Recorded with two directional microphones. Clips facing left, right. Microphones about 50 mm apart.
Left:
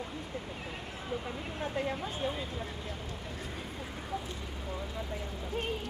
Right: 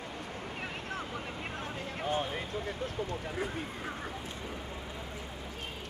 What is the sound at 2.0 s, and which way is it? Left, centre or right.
Speech, right.